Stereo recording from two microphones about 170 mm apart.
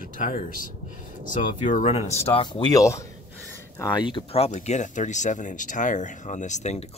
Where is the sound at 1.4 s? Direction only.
45° left (ahead or behind).